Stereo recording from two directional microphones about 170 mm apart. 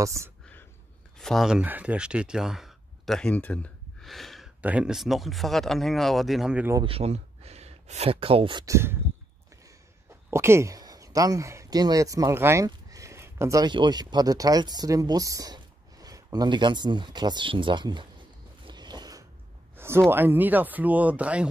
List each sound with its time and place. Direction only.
0.0 s speech: 15° right (ahead or behind)
1.1 s speech: centre (ahead or behind)
6.9 s speech: 35° right (ahead or behind); by 8.9 s 15° right (ahead or behind)
10.3 s speech: 15° right (ahead or behind)
18.7 s a sound: 25° right (ahead or behind)
20.1 s speech: 10° right (ahead or behind)